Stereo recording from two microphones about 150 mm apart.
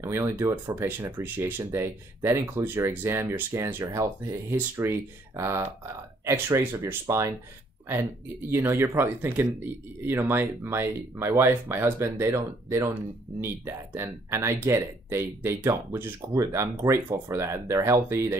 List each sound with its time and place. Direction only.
0.0 s speech: 20° right (ahead or behind)